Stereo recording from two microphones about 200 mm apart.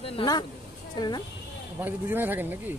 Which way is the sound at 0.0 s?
25° left (ahead or behind).